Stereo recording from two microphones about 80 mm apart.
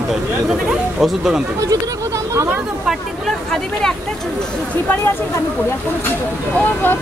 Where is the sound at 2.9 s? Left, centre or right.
Centre.